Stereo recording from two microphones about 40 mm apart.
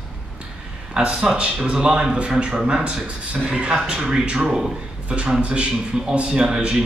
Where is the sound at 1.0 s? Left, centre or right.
Right.